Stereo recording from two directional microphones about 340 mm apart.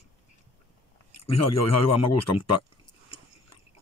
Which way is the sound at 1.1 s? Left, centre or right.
Left.